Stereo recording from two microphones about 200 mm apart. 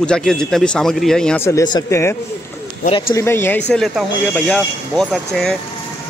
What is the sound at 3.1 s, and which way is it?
A man's voice, 10° left (ahead or behind).